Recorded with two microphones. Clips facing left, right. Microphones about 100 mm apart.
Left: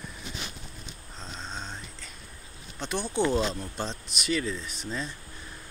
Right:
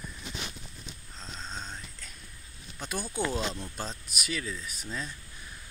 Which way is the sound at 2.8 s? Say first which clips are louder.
Left 4 dB; 5° right (ahead or behind).